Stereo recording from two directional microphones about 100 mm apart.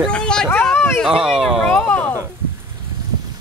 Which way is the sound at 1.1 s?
5° right (ahead or behind).